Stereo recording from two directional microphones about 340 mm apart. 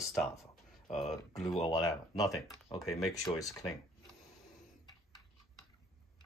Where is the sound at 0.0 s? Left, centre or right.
Centre.